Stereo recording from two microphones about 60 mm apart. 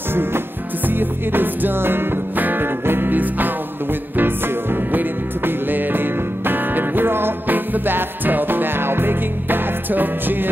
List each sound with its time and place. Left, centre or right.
0.1 s music: right